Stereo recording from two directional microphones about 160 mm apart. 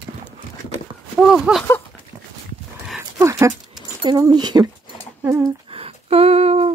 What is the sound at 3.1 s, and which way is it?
Dog, 15° right (ahead or behind).